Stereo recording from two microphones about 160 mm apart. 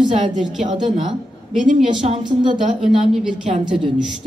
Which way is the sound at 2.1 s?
30° right (ahead or behind).